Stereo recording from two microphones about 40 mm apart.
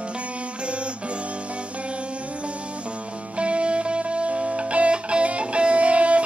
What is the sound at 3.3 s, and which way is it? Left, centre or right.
Music, right.